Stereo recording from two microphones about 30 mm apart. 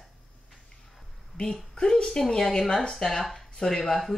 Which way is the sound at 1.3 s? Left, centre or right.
Left.